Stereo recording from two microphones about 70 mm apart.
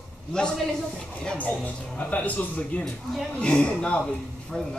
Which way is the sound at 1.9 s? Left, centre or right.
Left.